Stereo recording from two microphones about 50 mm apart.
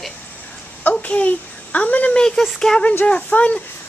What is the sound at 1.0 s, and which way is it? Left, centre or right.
A child's voice, left.